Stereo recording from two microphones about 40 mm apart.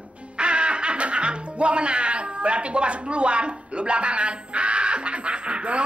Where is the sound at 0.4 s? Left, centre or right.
Right.